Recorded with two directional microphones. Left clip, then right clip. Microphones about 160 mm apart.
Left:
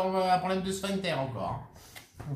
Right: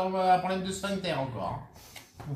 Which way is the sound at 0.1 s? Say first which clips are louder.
Right 2 dB; 30° left (ahead or behind).